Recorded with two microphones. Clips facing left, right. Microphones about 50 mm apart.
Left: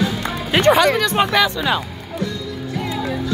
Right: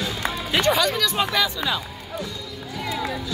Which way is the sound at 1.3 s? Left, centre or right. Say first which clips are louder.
Left 6 dB; left.